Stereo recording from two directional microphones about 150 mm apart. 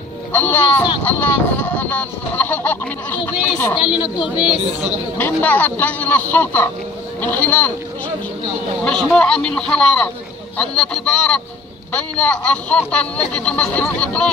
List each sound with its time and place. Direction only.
0.3 s speech: 10° left (ahead or behind)
4.0 s speech: 30° left (ahead or behind)
5.1 s speech: 10° left (ahead or behind)
8.8 s a man's voice: 5° left (ahead or behind)